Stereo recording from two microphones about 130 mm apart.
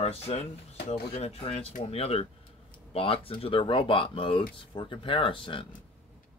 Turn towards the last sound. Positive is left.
turn(degrees=40)  # may be behind; listen again after turning